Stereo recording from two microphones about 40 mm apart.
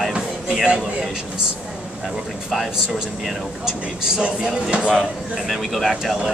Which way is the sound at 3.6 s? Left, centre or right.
Centre.